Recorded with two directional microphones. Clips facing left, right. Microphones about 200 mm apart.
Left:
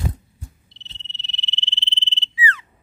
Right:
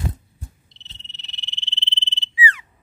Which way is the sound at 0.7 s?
15° right (ahead or behind).